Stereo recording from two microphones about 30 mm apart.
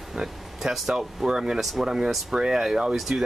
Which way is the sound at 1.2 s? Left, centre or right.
Right.